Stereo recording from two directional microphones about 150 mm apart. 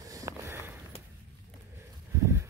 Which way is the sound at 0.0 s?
20° right (ahead or behind).